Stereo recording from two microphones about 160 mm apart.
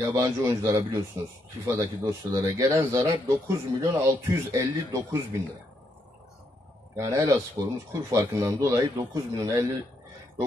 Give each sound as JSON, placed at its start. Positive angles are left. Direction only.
{"t": 0.0, "sound": "speech", "side_deg": -20}
{"t": 7.0, "sound": "speech", "side_deg": -20}